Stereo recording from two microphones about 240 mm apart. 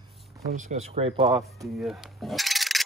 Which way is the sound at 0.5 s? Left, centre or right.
Right.